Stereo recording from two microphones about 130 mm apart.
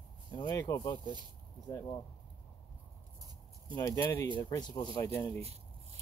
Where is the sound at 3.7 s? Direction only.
25° left (ahead or behind).